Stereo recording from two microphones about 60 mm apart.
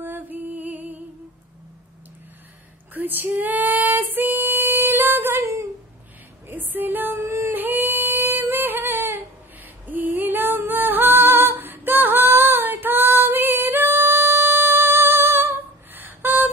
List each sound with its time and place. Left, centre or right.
0.0 s music: right
2.9 s female singing: right
6.4 s female singing: right
7.4 s singing: right
9.8 s female singing: right